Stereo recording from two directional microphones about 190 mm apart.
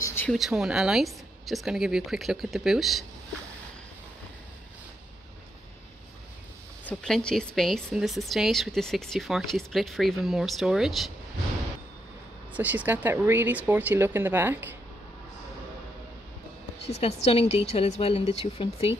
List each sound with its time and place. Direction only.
0.0 s a sound: 10° left (ahead or behind)
0.3 s speech: centre (ahead or behind)
6.9 s speech: 5° left (ahead or behind)
12.5 s speech: 10° right (ahead or behind)
16.9 s a woman's voice: 30° left (ahead or behind)